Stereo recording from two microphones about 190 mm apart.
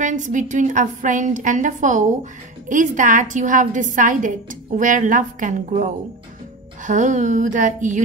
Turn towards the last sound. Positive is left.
turn(degrees=-40)  # may be behind; listen again after turning